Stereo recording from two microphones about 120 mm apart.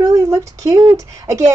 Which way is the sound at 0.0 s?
25° right (ahead or behind).